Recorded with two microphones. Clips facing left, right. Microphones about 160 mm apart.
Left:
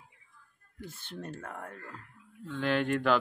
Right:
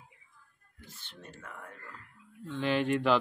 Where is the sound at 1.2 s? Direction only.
60° left (ahead or behind).